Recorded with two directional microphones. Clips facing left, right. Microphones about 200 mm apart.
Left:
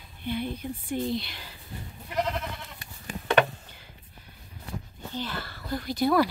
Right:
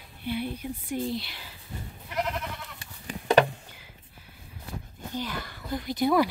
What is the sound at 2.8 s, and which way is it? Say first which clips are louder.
Sheep: even; 35° right (ahead or behind).